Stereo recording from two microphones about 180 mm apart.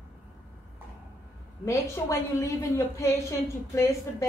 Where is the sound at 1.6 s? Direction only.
15° left (ahead or behind).